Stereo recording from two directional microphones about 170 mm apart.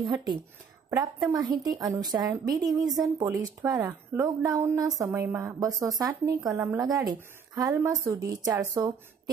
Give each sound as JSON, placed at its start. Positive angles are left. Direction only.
{"t": 0.1, "sound": "speech", "side_deg": -25}